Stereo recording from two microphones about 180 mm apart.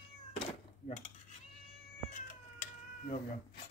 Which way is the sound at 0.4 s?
35° left (ahead or behind).